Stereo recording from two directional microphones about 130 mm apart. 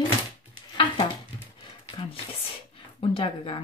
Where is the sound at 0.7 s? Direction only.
40° left (ahead or behind).